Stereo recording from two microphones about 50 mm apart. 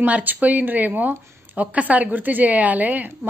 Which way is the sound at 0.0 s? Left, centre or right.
Right.